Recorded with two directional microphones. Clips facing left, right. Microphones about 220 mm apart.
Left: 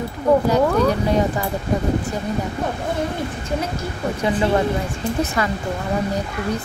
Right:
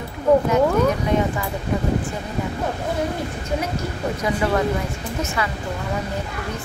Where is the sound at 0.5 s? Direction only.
35° left (ahead or behind).